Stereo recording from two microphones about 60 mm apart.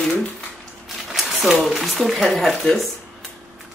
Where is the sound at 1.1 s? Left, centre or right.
Centre.